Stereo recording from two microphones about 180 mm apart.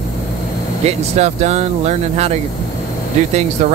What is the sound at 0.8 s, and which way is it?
Speech, 40° right (ahead or behind).